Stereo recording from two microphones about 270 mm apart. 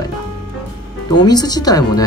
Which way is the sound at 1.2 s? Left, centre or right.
Centre.